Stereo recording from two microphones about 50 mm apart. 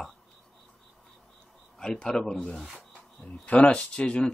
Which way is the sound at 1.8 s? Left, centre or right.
Centre.